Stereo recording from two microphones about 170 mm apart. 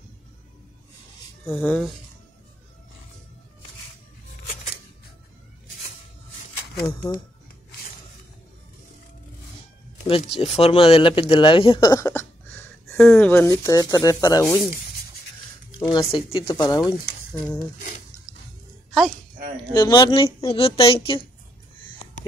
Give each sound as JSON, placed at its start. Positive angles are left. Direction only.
{"t": 1.6, "sound": "speech", "side_deg": 10}
{"t": 6.9, "sound": "speech", "side_deg": 20}
{"t": 10.0, "sound": "speech", "side_deg": 35}
{"t": 12.9, "sound": "speech", "side_deg": 5}
{"t": 13.3, "sound": "speech", "side_deg": 15}
{"t": 15.8, "sound": "speech", "side_deg": 25}
{"t": 16.6, "sound": "speech", "side_deg": 20}
{"t": 17.7, "sound": "a sound", "side_deg": 50}
{"t": 19.7, "sound": "a woman's voice", "side_deg": 25}